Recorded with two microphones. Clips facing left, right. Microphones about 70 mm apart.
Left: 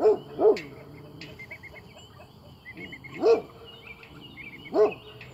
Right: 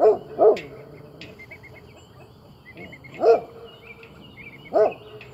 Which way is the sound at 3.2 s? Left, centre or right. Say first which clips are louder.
Right 4 dB; right.